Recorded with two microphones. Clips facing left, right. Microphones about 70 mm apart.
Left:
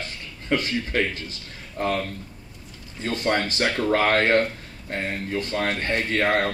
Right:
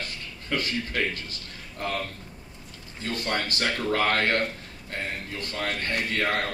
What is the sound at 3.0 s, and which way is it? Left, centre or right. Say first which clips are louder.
A man's voice: left 5 dB; left.